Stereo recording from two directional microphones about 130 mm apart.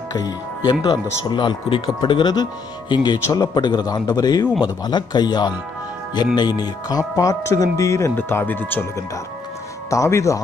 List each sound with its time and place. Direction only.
1.3 s a man's voice: 35° left (ahead or behind); by 8.8 s 15° left (ahead or behind)
9.8 s speech: 20° left (ahead or behind)